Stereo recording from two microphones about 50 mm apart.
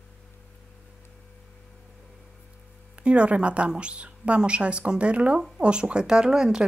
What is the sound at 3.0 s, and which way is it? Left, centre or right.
Speech, right.